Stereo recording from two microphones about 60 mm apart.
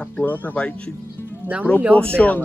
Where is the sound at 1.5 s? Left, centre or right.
Right.